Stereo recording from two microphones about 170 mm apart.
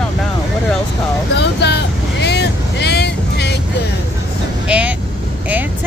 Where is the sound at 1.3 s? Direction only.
80° left.